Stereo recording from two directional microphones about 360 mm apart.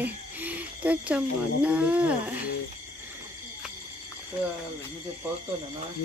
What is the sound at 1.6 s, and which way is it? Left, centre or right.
Speech, centre.